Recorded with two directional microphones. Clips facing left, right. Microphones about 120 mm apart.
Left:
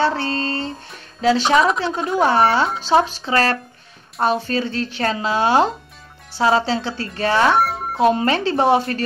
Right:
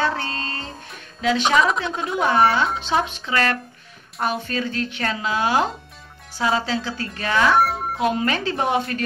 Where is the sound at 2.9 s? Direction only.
35° left (ahead or behind).